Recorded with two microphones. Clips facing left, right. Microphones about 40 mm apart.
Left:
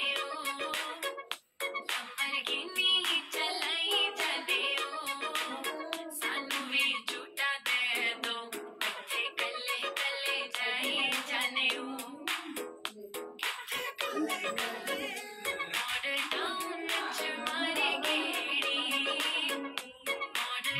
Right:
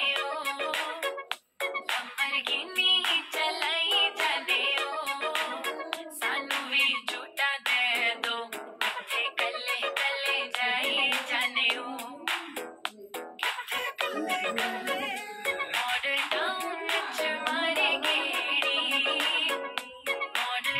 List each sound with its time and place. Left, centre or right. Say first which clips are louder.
0.0 s music: right 5 dB; right